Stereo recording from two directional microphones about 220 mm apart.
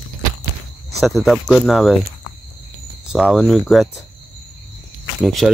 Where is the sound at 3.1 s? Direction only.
Centre (ahead or behind).